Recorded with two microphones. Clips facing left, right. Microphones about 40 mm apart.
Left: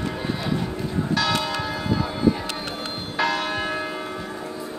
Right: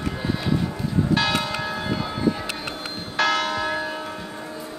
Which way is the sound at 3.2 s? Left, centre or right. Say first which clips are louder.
Right 2 dB; right.